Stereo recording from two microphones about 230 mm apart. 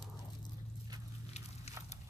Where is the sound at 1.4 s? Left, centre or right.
Left.